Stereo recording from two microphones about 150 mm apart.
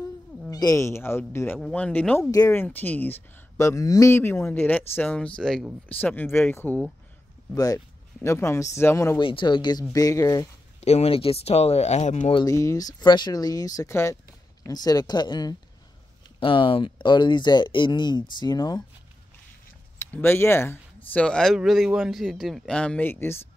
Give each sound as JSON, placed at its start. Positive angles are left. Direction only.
{"t": 0.5, "sound": "speech", "side_deg": 25}
{"t": 2.3, "sound": "speech", "side_deg": 20}
{"t": 5.9, "sound": "speech", "side_deg": 10}
{"t": 7.5, "sound": "speech", "side_deg": 25}
{"t": 9.2, "sound": "speech", "side_deg": 35}
{"t": 10.8, "sound": "speech", "side_deg": 45}
{"t": 12.4, "sound": "speech", "side_deg": 20}
{"t": 20.0, "sound": "speech", "side_deg": 15}